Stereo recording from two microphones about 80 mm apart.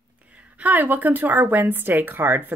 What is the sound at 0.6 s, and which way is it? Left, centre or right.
Speech, right.